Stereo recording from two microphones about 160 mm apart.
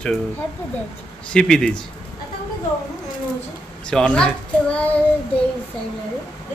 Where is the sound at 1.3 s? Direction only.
5° left (ahead or behind).